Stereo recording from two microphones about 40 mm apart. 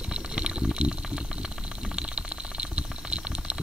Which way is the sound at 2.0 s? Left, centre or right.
Right.